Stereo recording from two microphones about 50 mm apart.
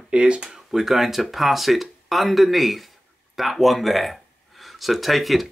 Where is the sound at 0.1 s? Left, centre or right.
Centre.